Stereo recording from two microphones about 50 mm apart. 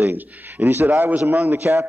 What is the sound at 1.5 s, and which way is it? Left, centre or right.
Speech, right.